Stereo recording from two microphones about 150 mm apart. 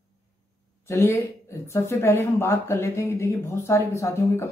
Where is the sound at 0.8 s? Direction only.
15° left (ahead or behind).